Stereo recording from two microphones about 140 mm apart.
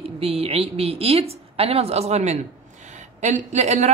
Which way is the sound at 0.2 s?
45° right (ahead or behind).